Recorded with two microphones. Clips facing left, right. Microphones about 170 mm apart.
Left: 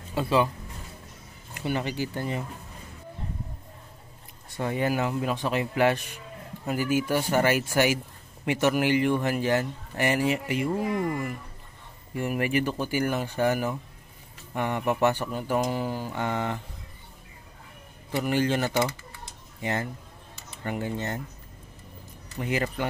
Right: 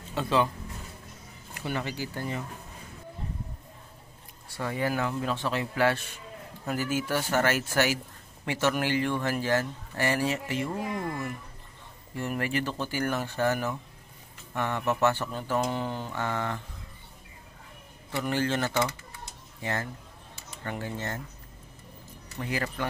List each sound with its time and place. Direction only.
0.1 s speech: 10° left (ahead or behind)
1.6 s speech: 20° left (ahead or behind)
4.5 s speech: 20° left (ahead or behind)
12.2 s speech: 15° left (ahead or behind)
18.2 s speech: 15° left (ahead or behind)
22.4 s speech: 20° left (ahead or behind)